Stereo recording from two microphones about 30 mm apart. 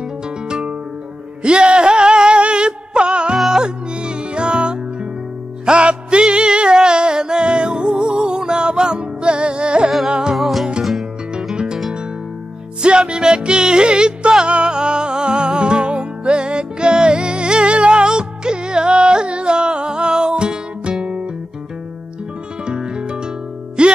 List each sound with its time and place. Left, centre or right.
0.5 s music: right
10.3 s music: centre
11.5 s music: right
12.8 s music: right
22.7 s music: right